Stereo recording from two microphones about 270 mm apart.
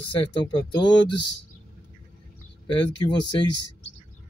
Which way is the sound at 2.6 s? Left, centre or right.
Centre.